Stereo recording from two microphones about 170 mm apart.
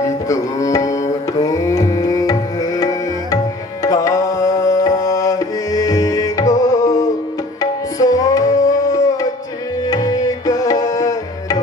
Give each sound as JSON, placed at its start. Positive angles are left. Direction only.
{"t": 0.0, "sound": "tabla", "side_deg": 20}
{"t": 3.8, "sound": "music", "side_deg": 20}
{"t": 9.8, "sound": "tabla", "side_deg": 20}